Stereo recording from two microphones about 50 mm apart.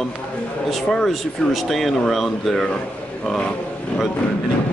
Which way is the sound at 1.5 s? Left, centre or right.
Centre.